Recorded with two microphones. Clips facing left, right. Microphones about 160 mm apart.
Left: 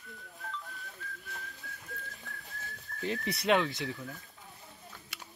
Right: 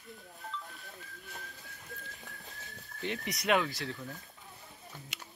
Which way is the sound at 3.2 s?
30° left (ahead or behind).